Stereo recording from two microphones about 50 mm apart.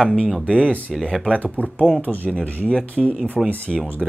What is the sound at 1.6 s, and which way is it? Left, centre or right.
Speech, left.